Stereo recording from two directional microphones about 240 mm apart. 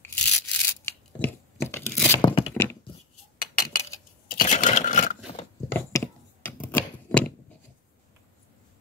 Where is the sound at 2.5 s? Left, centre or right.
Centre.